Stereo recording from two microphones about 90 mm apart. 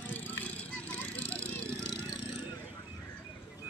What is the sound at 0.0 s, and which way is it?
Vehicle, 20° left (ahead or behind).